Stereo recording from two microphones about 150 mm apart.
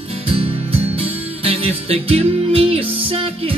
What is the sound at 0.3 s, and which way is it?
Music, 40° right (ahead or behind).